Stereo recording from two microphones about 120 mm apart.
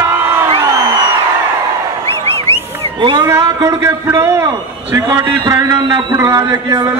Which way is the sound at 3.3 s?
30° right (ahead or behind).